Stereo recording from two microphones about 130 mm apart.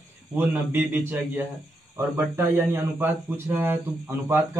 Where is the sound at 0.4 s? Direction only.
15° right (ahead or behind).